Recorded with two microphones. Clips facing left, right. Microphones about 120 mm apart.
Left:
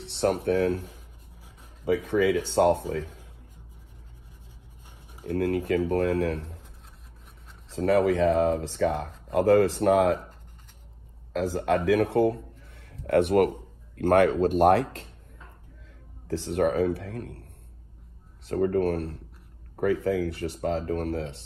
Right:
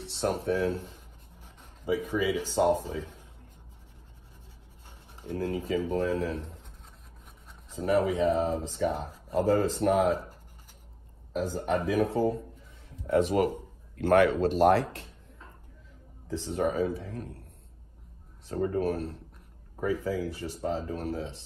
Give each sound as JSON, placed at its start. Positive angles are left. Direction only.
{"t": 0.2, "sound": "speech", "side_deg": 60}
{"t": 1.9, "sound": "speech", "side_deg": 70}
{"t": 5.3, "sound": "speech", "side_deg": 65}
{"t": 7.7, "sound": "speech", "side_deg": 75}
{"t": 11.3, "sound": "speech", "side_deg": 75}
{"t": 13.9, "sound": "speech", "side_deg": 50}
{"t": 16.3, "sound": "speech", "side_deg": 70}
{"t": 18.5, "sound": "speech", "side_deg": 60}